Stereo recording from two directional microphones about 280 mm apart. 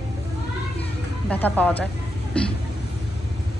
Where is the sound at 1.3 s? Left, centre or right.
Centre.